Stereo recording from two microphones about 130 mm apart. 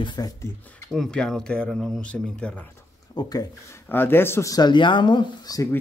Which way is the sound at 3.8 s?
15° left (ahead or behind).